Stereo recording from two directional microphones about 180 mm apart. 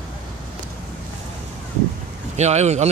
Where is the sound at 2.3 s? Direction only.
40° right (ahead or behind).